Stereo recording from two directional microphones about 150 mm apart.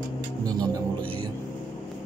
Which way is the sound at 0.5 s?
25° right (ahead or behind).